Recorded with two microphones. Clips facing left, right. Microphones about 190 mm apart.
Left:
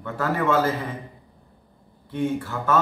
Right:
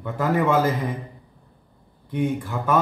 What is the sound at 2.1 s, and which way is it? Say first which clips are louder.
Speech: right 1 dB; 15° right (ahead or behind).